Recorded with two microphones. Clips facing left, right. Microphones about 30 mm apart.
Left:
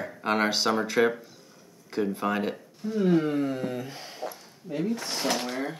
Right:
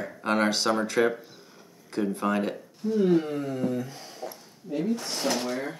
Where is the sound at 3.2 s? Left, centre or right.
Left.